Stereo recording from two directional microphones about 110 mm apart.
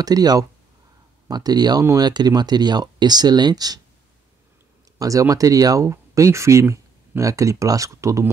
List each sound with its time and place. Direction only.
0.0 s speech: 35° right (ahead or behind)
4.9 s speech: 30° right (ahead or behind)